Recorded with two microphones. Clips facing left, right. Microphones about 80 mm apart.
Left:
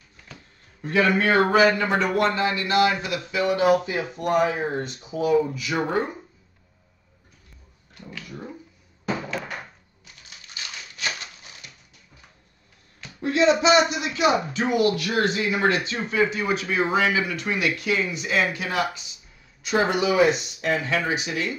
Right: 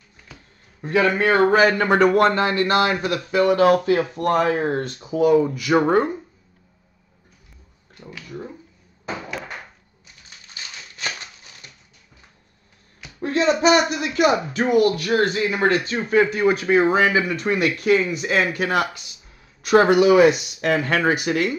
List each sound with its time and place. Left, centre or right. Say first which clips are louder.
0.8 s speech: right 2 dB; right
5.1 s speech: right 5 dB; right
13.2 s speech: right 1 dB; right